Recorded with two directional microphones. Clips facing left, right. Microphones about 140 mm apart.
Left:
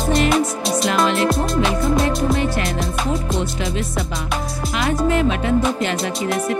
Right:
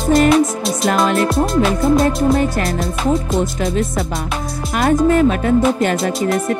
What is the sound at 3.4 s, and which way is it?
Music, 45° right (ahead or behind).